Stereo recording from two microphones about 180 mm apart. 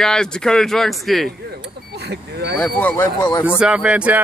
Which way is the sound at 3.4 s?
5° right (ahead or behind).